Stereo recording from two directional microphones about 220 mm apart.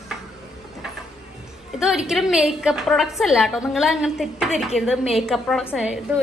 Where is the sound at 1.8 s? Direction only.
5° right (ahead or behind).